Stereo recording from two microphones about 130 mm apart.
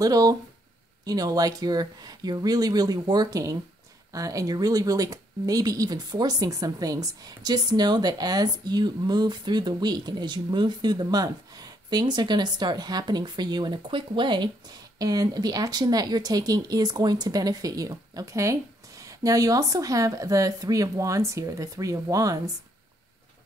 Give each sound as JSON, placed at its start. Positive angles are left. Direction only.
{"t": 0.0, "sound": "a woman's voice", "side_deg": -30}